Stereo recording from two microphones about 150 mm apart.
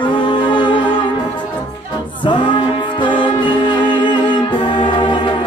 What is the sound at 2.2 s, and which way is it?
Music, 30° left (ahead or behind).